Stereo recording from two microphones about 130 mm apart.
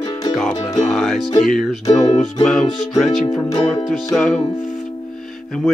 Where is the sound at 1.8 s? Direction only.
30° left (ahead or behind).